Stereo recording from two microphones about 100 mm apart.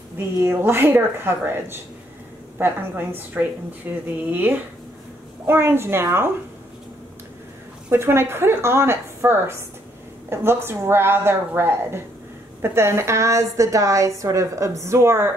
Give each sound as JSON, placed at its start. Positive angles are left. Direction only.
{"t": 0.4, "sound": "a woman's voice", "side_deg": -25}
{"t": 7.9, "sound": "a woman's voice", "side_deg": -25}